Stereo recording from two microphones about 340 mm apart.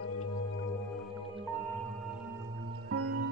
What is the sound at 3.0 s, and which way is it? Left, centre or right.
Music, right.